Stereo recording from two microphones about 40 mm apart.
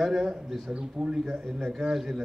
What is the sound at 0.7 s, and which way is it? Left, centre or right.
A man's voice, right.